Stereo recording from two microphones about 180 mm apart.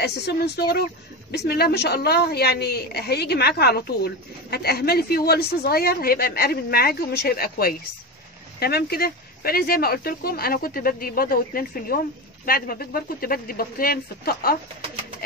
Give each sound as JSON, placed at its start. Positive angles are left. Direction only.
{"t": 0.0, "sound": "a woman's voice", "side_deg": 65}